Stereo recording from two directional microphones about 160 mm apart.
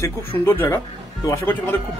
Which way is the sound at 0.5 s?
15° left (ahead or behind).